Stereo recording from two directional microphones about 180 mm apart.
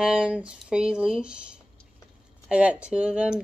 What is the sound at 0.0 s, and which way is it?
Speech, 5° right (ahead or behind).